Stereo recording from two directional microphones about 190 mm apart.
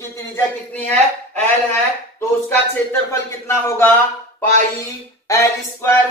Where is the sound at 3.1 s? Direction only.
15° left (ahead or behind).